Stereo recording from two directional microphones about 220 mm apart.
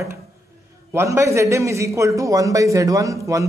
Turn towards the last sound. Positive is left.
turn(degrees=-15)  # may be behind; listen again after turning